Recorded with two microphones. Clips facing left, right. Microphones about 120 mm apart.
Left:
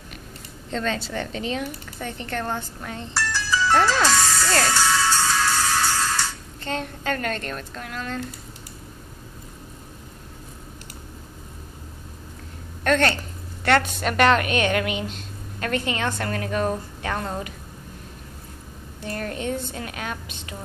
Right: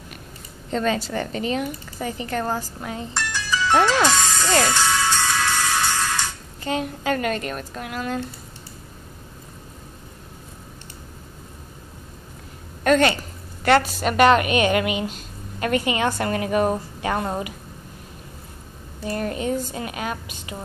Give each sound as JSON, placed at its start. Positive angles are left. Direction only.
{"t": 0.7, "sound": "speech", "side_deg": -5}
{"t": 3.2, "sound": "music", "side_deg": -15}
{"t": 12.8, "sound": "a woman's voice", "side_deg": -5}
{"t": 19.0, "sound": "a woman's voice", "side_deg": -5}